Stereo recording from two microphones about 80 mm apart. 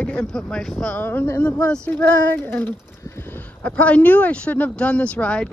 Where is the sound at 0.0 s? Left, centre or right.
Centre.